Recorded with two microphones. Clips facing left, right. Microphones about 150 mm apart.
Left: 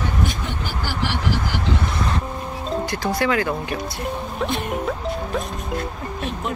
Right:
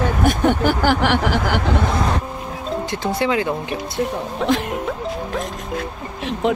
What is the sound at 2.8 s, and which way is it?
Speech, 25° right (ahead or behind).